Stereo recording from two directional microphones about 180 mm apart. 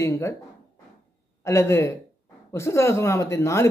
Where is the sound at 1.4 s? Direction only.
15° left (ahead or behind).